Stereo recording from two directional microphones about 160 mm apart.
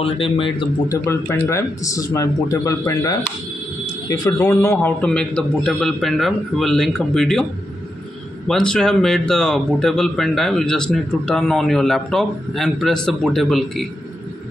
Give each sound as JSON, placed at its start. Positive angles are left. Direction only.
{"t": 0.0, "sound": "a man's voice", "side_deg": 35}
{"t": 0.8, "sound": "speech", "side_deg": 15}
{"t": 4.4, "sound": "a man's voice", "side_deg": 15}
{"t": 8.5, "sound": "speech", "side_deg": 5}